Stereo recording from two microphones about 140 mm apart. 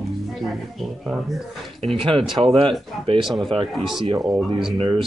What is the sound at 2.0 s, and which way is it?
Speech, 40° right (ahead or behind).